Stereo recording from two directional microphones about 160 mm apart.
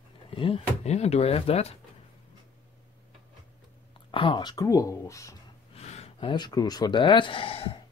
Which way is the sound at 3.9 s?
30° left (ahead or behind).